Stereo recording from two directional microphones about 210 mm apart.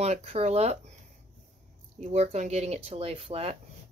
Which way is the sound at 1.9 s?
30° right (ahead or behind).